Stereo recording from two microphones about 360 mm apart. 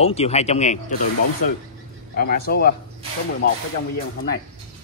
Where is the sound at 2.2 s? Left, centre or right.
Left.